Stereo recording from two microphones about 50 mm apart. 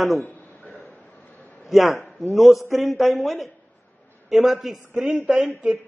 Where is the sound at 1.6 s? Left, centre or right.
Centre.